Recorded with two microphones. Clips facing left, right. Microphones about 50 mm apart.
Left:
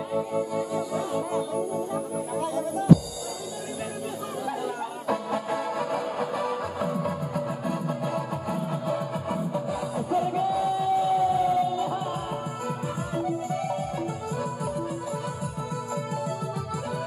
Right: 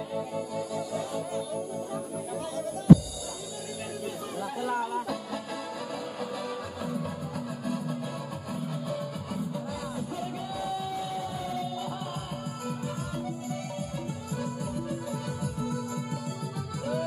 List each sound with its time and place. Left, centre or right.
0.7 s music: left
5.0 s music: left
10.5 s music: centre